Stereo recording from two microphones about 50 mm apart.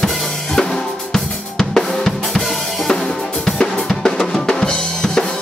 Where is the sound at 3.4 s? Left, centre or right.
Centre.